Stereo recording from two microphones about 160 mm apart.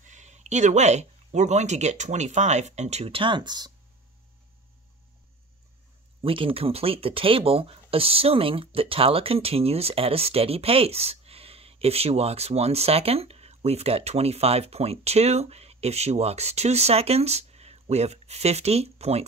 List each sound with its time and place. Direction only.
0.0 s speech: 50° right (ahead or behind); by 3.7 s 25° right (ahead or behind)
6.2 s speech: 35° right (ahead or behind)